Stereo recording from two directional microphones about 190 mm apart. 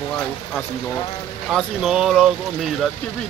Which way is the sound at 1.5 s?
Centre (ahead or behind).